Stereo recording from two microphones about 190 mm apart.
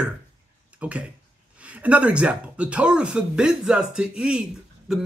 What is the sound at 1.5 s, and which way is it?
Speech, 5° right (ahead or behind).